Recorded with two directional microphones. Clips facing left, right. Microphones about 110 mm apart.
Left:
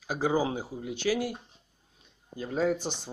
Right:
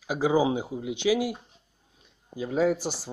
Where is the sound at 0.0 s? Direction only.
10° right (ahead or behind).